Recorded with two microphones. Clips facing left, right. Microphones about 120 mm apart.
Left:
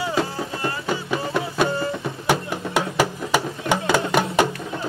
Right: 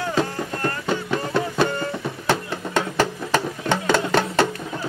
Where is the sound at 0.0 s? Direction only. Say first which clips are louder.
Even; 10° left (ahead or behind).